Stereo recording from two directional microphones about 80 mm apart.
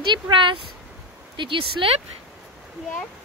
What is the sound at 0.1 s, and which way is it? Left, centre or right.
Speech, right.